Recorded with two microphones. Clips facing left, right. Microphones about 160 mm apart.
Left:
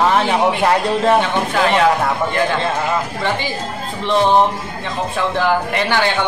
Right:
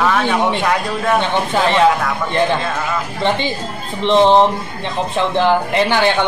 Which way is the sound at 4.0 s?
25° right (ahead or behind).